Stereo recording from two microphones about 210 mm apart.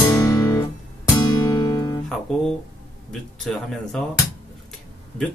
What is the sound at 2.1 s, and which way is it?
Speech, centre (ahead or behind).